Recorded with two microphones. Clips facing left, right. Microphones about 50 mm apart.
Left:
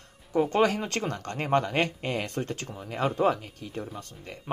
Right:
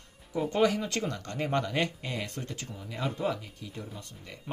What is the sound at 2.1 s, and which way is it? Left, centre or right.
Speech, left.